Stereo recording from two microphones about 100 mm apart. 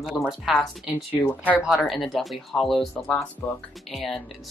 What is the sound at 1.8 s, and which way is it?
Speech, 5° left (ahead or behind).